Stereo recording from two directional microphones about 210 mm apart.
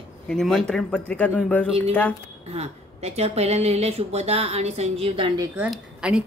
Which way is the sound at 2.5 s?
30° right (ahead or behind).